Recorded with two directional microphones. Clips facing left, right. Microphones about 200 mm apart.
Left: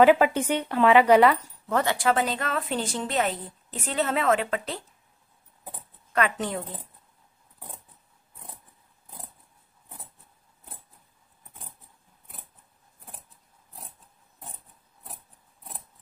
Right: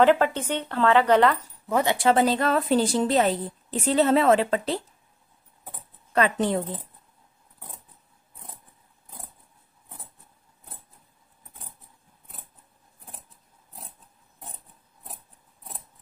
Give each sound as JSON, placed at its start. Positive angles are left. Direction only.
{"t": 0.0, "sound": "speech", "side_deg": 10}
{"t": 1.7, "sound": "speech", "side_deg": -15}
{"t": 2.0, "sound": "a woman's voice", "side_deg": -30}
{"t": 6.1, "sound": "a woman's voice", "side_deg": -30}